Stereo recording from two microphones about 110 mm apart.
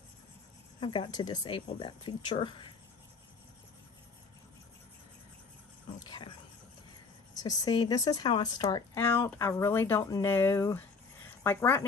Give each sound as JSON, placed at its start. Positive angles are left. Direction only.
{"t": 0.7, "sound": "speech", "side_deg": 45}
{"t": 6.0, "sound": "a sound", "side_deg": 45}
{"t": 7.4, "sound": "speech", "side_deg": 35}
{"t": 9.0, "sound": "speech", "side_deg": 20}